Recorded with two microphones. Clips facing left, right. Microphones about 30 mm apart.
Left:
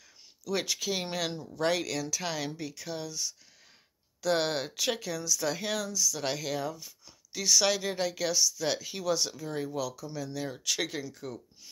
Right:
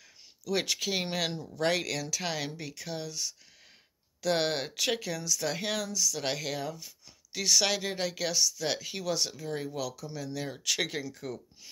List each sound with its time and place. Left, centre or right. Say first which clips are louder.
0.5 s speech: right 1 dB; right
3.1 s speech: even; right
4.2 s speech: even; right
5.9 s speech: even; right
6.1 s a woman's voice: left 1 dB; right
9.8 s speech: left 2 dB; right
11.3 s speech: right 2 dB; right